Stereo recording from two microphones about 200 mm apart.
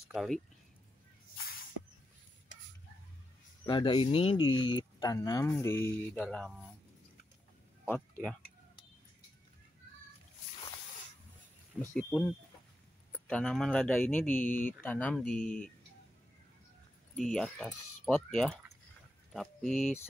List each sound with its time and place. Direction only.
0.1 s speech: centre (ahead or behind)
3.6 s speech: 25° left (ahead or behind); by 6.5 s 5° left (ahead or behind)
7.8 s speech: 5° left (ahead or behind)
11.9 s speech: 5° left (ahead or behind)
13.3 s speech: 5° left (ahead or behind)
17.1 s speech: 5° left (ahead or behind)